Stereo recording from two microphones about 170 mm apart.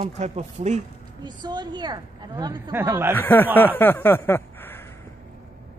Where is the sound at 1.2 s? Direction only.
25° right (ahead or behind).